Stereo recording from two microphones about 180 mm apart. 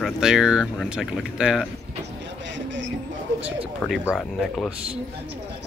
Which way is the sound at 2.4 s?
90° right.